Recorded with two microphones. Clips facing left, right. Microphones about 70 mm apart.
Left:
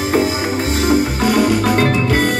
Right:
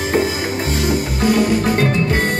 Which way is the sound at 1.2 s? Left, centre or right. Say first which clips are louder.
Right 3 dB; left.